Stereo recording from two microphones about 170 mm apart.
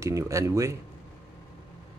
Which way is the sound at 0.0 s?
20° right (ahead or behind).